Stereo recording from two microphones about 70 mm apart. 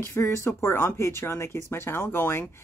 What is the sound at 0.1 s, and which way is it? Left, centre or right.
Speech, left.